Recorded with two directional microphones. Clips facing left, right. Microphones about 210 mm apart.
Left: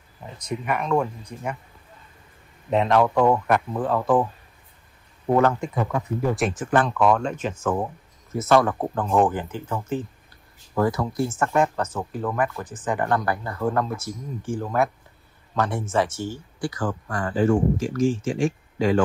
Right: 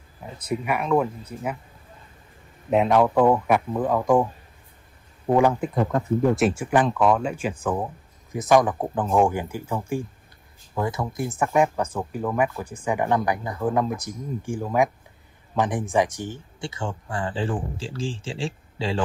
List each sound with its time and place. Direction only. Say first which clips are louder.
0.4 s speech: right 1 dB; 10° right (ahead or behind)
2.7 s speech: right 1 dB; 10° right (ahead or behind)
5.3 s speech: even; 10° right (ahead or behind)
10.8 s speech: left 4 dB; 20° right (ahead or behind)